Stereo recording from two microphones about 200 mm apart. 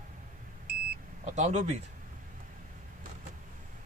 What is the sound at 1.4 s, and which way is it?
Speech, 35° right (ahead or behind).